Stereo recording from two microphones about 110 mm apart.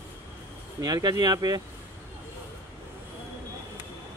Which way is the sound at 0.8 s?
35° right (ahead or behind).